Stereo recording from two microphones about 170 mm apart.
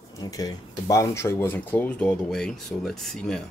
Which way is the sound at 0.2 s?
20° left (ahead or behind).